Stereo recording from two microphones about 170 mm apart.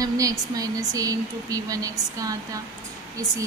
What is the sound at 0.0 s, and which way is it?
Speech, 20° right (ahead or behind).